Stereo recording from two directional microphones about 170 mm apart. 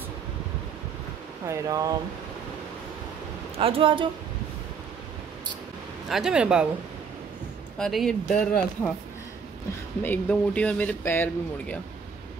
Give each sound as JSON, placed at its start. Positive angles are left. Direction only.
{"t": 1.4, "sound": "speech", "side_deg": -20}
{"t": 3.5, "sound": "speech", "side_deg": -35}
{"t": 6.0, "sound": "speech", "side_deg": -5}
{"t": 7.8, "sound": "speech", "side_deg": 0}
{"t": 10.0, "sound": "speech", "side_deg": 10}